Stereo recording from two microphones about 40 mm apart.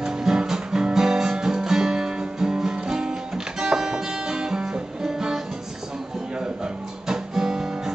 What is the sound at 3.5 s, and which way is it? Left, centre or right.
Guitar, centre.